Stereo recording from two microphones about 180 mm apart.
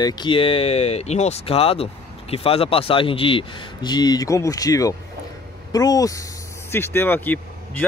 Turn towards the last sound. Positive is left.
turn(degrees=10)  # may be behind; listen again after turning